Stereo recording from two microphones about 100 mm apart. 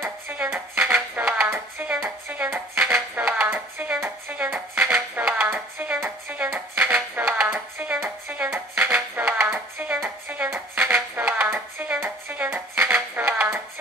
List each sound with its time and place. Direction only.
0.0 s music: 20° right (ahead or behind)